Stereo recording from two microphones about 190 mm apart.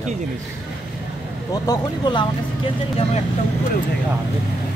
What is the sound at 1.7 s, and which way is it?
Speech, 25° left (ahead or behind).